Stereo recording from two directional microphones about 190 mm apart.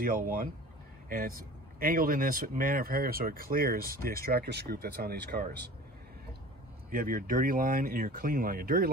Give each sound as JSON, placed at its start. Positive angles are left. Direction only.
{"t": 0.0, "sound": "speech", "side_deg": -50}
{"t": 6.9, "sound": "speech", "side_deg": -50}